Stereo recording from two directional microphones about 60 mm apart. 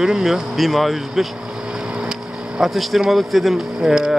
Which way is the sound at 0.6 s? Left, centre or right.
Centre.